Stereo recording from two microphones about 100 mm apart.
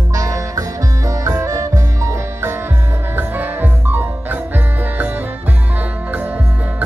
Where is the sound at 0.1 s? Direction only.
35° right (ahead or behind).